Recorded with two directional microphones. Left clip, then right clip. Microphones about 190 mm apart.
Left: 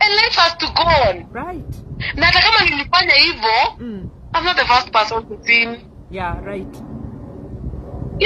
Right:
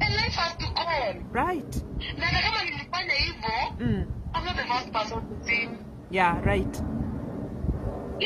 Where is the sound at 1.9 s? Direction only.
45° left (ahead or behind).